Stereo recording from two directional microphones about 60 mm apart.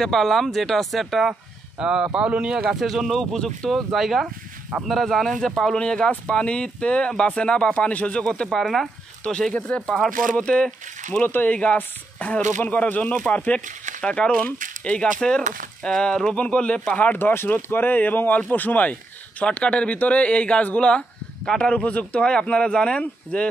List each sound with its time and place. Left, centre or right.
0.0 s speech: centre
1.8 s speech: centre
3.3 s speech: centre
3.7 s speech: centre; by 8.2 s left
8.5 s speech: centre
9.2 s speech: centre
11.1 s speech: left